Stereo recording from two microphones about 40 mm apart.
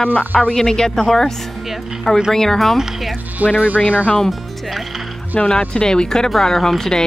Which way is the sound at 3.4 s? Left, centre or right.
Right.